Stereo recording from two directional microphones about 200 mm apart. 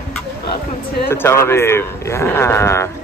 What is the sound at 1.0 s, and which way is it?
Speech, 10° left (ahead or behind).